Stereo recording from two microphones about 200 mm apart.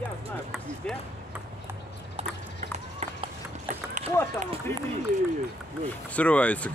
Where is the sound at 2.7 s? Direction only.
35° right (ahead or behind).